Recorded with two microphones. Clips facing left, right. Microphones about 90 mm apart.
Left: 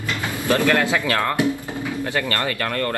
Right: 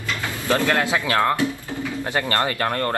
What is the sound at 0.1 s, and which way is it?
Bird, 20° left (ahead or behind).